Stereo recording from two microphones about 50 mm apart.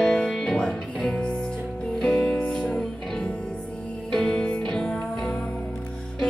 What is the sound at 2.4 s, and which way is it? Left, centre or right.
Music, centre.